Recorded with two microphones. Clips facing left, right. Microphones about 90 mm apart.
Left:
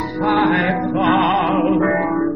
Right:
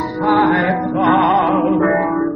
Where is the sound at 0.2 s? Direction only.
20° right (ahead or behind).